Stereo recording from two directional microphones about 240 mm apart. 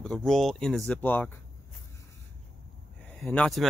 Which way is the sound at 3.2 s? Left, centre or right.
Centre.